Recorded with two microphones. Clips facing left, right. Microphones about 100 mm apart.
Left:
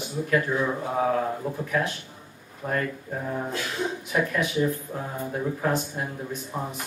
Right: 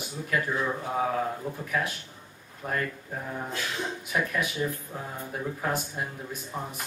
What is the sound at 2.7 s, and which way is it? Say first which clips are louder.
Speech: left 3 dB; 10° left (ahead or behind).